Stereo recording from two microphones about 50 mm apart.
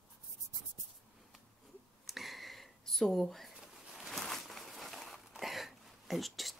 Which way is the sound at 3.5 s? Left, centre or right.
Centre.